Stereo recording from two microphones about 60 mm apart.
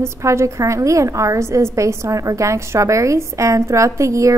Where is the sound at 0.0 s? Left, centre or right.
Right.